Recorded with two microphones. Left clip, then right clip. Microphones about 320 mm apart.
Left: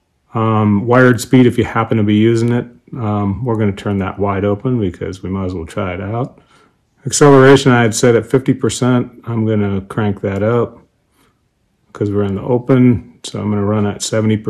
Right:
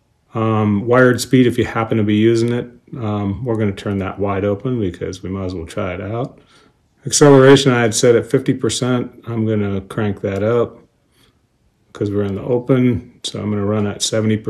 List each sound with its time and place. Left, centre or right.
0.3 s speech: centre
11.9 s speech: centre